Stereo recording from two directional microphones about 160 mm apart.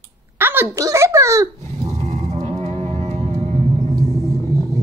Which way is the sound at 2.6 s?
45° right (ahead or behind).